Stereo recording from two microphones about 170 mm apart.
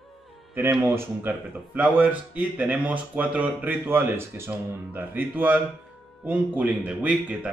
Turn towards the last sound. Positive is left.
turn(degrees=-5)  # may be behind; listen again after turning